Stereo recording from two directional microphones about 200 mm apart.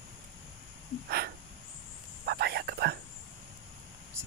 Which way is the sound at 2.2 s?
55° right (ahead or behind).